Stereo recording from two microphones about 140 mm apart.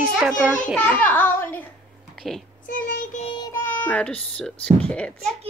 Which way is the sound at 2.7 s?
70° left (ahead or behind).